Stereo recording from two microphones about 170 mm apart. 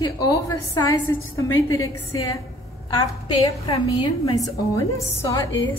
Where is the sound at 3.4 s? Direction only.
35° left (ahead or behind).